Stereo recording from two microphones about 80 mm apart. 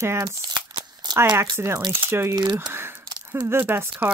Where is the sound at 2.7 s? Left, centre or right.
Right.